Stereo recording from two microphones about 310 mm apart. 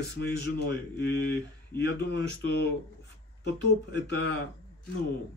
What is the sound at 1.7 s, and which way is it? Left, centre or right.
A man's voice, left.